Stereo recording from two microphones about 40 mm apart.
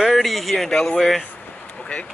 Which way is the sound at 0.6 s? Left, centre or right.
Centre.